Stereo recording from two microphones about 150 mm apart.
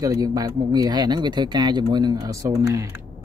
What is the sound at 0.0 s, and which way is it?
Speech, 25° right (ahead or behind).